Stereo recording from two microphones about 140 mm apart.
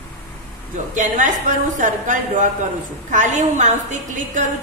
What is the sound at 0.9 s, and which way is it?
A woman's voice, 60° right (ahead or behind).